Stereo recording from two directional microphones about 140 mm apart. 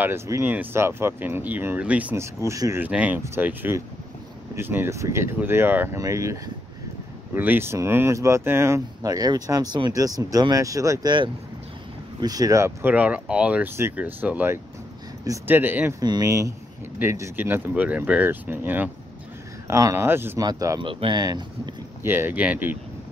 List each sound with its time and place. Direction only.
0.0 s speech: 15° right (ahead or behind)
2.8 s speech: 10° right (ahead or behind)
16.0 s speech: 25° right (ahead or behind)
20.8 s speech: 35° right (ahead or behind)
22.0 s speech: 15° right (ahead or behind)